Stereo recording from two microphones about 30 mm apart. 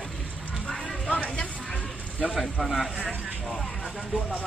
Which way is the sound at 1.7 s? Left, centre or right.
Left.